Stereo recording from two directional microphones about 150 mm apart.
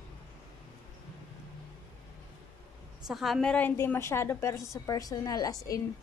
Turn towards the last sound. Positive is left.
turn(degrees=25)  # may be behind; listen again after turning